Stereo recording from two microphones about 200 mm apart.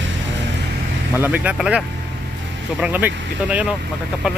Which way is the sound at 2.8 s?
10° right (ahead or behind).